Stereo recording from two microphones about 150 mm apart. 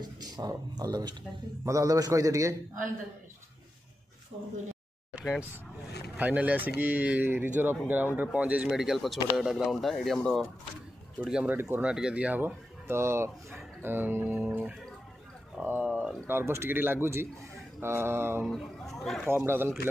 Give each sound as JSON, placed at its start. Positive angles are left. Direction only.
{"t": 0.0, "sound": "a man's voice", "side_deg": -25}
{"t": 5.1, "sound": "speech", "side_deg": -5}
{"t": 11.1, "sound": "speech", "side_deg": -10}
{"t": 16.3, "sound": "speech", "side_deg": -15}
{"t": 18.4, "sound": "speech", "side_deg": 0}
{"t": 19.2, "sound": "speech", "side_deg": -15}